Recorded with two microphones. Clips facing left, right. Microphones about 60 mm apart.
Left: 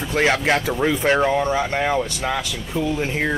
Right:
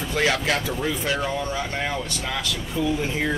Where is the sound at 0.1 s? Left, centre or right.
Left.